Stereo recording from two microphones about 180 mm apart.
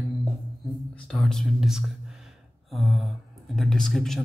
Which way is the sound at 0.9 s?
Centre (ahead or behind).